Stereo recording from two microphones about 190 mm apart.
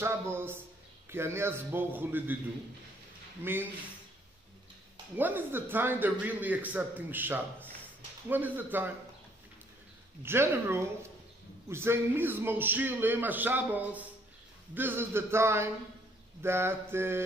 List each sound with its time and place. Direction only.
0.0 s a man's voice: 15° right (ahead or behind)
5.1 s a man's voice: 10° right (ahead or behind)
10.2 s a man's voice: 10° right (ahead or behind)